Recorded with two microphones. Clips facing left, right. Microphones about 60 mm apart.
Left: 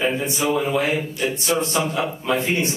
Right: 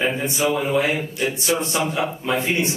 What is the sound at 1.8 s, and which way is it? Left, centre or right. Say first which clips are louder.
Speech: even; centre.